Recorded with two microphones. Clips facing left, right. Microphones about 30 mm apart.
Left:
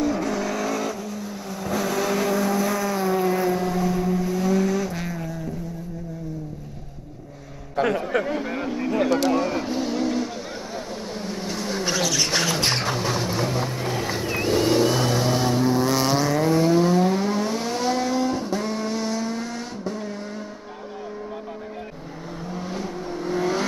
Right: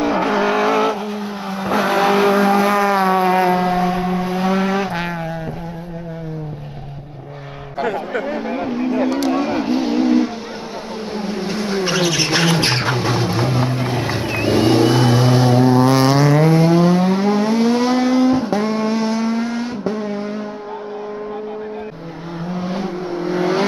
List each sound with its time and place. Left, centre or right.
0.0 s vehicle: right
7.8 s a sound: centre
8.5 s vehicle: centre
22.5 s vehicle: right